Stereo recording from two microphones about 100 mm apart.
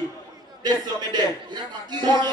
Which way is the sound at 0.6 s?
45° right (ahead or behind).